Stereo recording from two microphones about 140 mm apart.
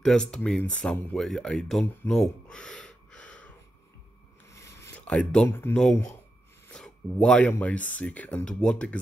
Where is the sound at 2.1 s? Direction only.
5° left (ahead or behind).